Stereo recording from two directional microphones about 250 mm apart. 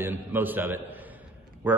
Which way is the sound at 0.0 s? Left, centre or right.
Centre.